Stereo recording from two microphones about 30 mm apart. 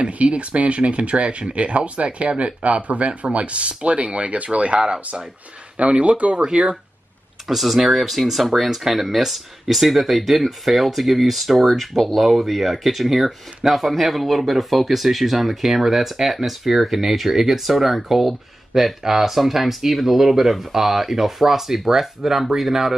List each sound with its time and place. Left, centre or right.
0.1 s speech: right
7.4 s speech: centre